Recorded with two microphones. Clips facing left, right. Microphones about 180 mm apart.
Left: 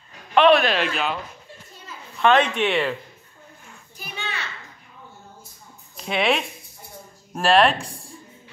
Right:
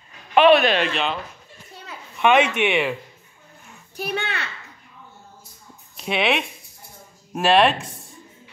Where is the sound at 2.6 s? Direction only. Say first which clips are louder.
Right 1 dB; 10° right (ahead or behind).